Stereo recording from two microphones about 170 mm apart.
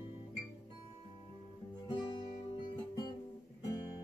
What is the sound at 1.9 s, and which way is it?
Guitar, 25° left (ahead or behind).